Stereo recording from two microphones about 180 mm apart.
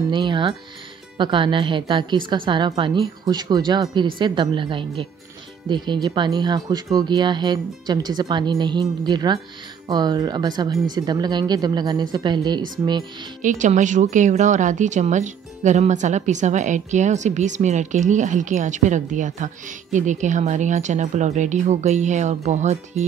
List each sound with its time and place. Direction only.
0.1 s a woman's voice: 25° right (ahead or behind)
13.4 s speech: 45° right (ahead or behind)